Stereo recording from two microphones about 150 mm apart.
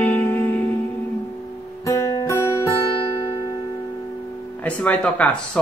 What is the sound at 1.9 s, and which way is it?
Music, 20° left (ahead or behind).